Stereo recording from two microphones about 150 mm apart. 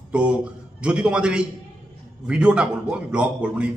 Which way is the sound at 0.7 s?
5° right (ahead or behind).